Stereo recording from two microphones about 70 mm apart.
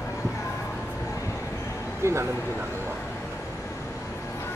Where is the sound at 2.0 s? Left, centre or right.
Right.